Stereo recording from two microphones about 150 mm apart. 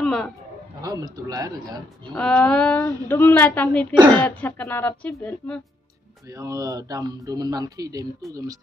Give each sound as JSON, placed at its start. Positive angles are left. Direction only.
{"t": 0.0, "sound": "a sound", "side_deg": 5}
{"t": 0.8, "sound": "a man's voice", "side_deg": -25}
{"t": 2.1, "sound": "a woman's voice", "side_deg": 5}
{"t": 6.3, "sound": "a man's voice", "side_deg": -25}